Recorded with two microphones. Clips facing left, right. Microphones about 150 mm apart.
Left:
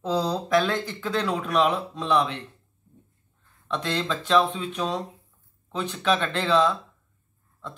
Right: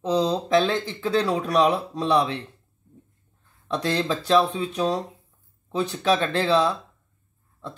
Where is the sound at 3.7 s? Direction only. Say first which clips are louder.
Right 3 dB; 35° right (ahead or behind).